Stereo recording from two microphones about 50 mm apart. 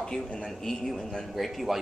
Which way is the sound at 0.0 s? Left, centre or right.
Centre.